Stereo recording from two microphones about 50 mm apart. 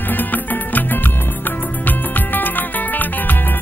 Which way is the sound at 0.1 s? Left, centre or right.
Left.